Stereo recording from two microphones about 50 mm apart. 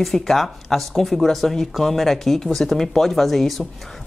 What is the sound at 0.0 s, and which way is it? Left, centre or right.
Speech, centre.